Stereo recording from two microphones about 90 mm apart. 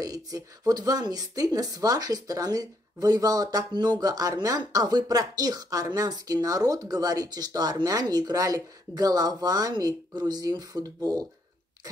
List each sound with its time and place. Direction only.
0.0 s speech: 40° right (ahead or behind)